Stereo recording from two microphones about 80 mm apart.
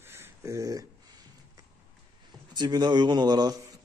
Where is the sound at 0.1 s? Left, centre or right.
Right.